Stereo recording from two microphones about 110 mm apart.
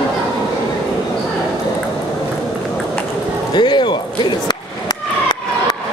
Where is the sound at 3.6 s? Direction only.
45° left (ahead or behind).